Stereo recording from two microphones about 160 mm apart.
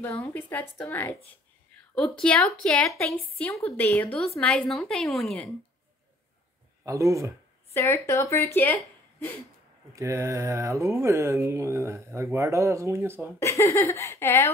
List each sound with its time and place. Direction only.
0.0 s a woman's voice: 15° left (ahead or behind)
6.8 s speech: 20° right (ahead or behind)
7.7 s a woman's voice: 15° left (ahead or behind)
9.9 s speech: 20° right (ahead or behind)
13.4 s a woman's voice: 20° left (ahead or behind)